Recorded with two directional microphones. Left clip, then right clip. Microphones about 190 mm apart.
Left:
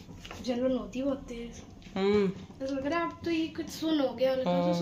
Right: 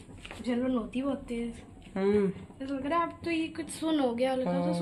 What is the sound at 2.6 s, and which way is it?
A woman's voice, 35° right (ahead or behind).